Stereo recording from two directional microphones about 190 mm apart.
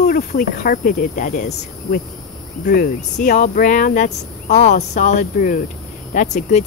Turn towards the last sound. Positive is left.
turn(degrees=40)  # may be behind; listen again after turning